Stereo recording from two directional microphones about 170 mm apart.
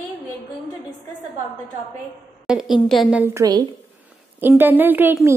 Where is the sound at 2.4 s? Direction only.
Centre (ahead or behind).